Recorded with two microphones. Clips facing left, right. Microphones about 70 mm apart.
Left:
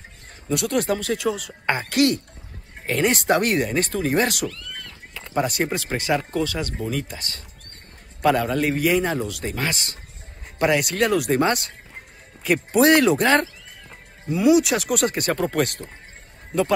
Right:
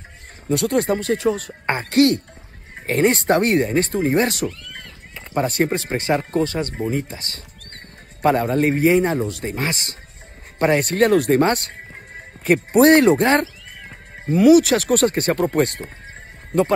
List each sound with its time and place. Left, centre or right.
0.5 s a man's voice: right
14.2 s a man's voice: right